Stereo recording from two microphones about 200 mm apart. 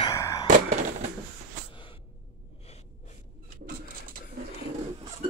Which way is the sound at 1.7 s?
25° left (ahead or behind).